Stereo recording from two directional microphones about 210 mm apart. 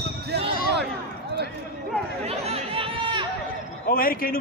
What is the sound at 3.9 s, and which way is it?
Speech, 45° left (ahead or behind).